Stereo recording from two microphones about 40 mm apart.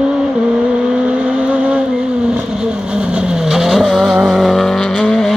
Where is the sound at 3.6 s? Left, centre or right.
Centre.